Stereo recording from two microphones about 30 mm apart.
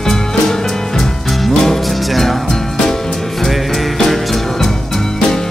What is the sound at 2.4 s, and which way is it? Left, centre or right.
Music, centre.